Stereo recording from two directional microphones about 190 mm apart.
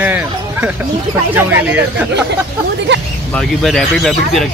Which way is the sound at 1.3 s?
10° right (ahead or behind).